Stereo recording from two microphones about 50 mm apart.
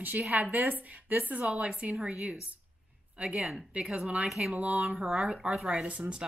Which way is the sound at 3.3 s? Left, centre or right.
Centre.